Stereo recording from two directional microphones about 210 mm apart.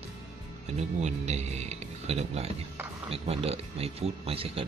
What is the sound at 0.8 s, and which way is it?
Speech, 30° right (ahead or behind).